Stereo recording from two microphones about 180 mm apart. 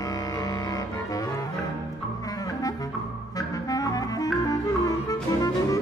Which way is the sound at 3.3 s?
20° left (ahead or behind).